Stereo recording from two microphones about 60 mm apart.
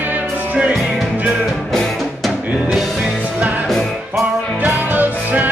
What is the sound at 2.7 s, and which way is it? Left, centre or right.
Music, centre.